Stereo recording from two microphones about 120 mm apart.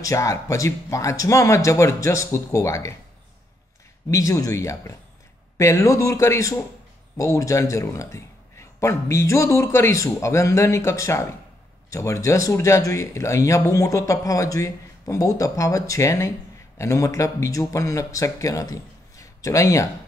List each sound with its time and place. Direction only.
0.0 s speech: 25° left (ahead or behind)
4.1 s speech: 30° left (ahead or behind)